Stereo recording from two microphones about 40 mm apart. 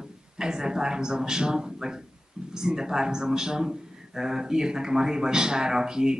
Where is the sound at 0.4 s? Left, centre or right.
Centre.